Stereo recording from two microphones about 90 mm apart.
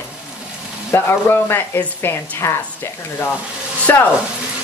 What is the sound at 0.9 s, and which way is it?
Speech, 25° left (ahead or behind).